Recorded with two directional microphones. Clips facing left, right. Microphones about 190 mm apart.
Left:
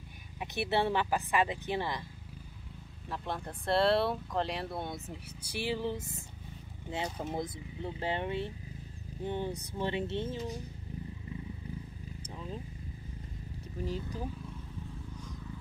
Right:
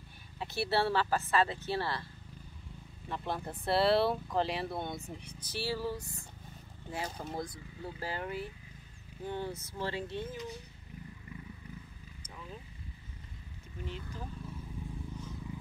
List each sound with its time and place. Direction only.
0.4 s speech: 20° left (ahead or behind)
3.1 s speech: 5° right (ahead or behind); by 10.5 s 25° left (ahead or behind)
12.2 s vehicle: 30° left (ahead or behind)
13.7 s speech: 35° left (ahead or behind)